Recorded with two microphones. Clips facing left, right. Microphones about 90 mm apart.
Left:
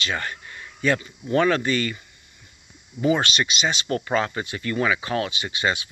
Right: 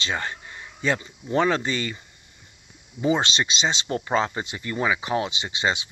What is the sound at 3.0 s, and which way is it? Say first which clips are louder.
Speech: left 1 dB; 20° right (ahead or behind).